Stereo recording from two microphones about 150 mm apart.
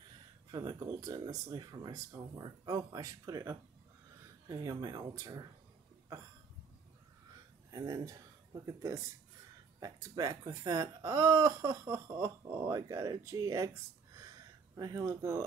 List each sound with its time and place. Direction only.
0.5 s speech: 30° right (ahead or behind)
7.7 s speech: 25° right (ahead or behind)
14.8 s speech: 25° right (ahead or behind)